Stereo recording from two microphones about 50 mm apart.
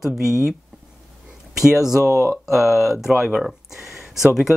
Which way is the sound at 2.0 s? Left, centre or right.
Left.